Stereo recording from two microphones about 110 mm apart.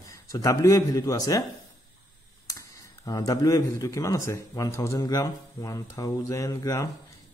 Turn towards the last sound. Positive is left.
turn(degrees=30)  # may be behind; listen again after turning